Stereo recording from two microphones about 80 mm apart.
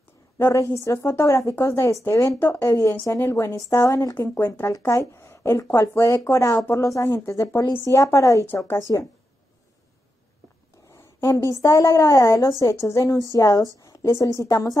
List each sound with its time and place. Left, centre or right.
0.4 s speech: left
2.3 s speech: left
2.7 s speech: left
4.4 s a woman's voice: left
10.9 s a sound: left
11.5 s a woman's voice: left